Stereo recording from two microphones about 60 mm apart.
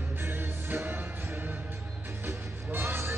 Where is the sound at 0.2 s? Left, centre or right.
Right.